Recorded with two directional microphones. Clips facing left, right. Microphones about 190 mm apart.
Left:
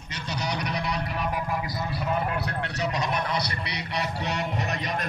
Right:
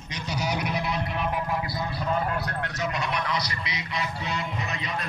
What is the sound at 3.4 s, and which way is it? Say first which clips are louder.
Speech: left 2 dB; 65° left (ahead or behind).